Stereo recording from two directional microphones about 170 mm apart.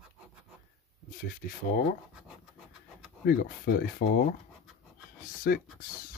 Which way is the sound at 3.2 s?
60° left (ahead or behind).